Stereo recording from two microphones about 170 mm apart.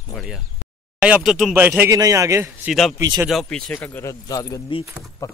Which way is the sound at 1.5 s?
10° right (ahead or behind).